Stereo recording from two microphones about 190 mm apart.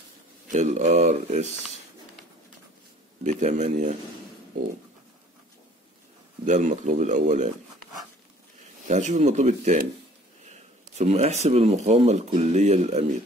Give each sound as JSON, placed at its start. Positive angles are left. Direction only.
{"t": 0.5, "sound": "speech", "side_deg": -40}
{"t": 3.3, "sound": "speech", "side_deg": -35}
{"t": 6.4, "sound": "speech", "side_deg": -40}
{"t": 8.8, "sound": "speech", "side_deg": -40}